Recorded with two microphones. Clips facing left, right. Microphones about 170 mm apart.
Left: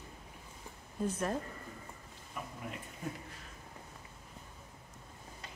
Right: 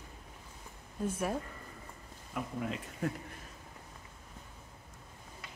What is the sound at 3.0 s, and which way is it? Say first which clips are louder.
Speech: right 7 dB; 85° right.